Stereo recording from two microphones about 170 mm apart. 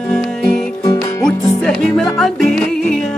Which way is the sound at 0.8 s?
20° left (ahead or behind).